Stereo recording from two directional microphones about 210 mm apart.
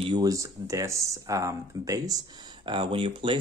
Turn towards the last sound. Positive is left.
turn(degrees=-25)  # may be behind; listen again after turning